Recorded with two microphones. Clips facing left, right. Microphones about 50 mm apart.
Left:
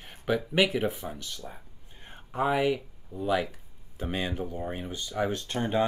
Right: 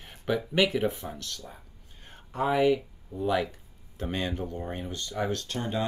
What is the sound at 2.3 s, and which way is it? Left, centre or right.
Speech, centre.